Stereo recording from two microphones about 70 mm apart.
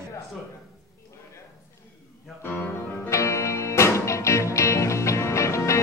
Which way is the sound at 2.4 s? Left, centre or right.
Left.